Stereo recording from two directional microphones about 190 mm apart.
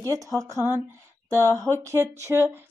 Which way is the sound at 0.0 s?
15° right (ahead or behind).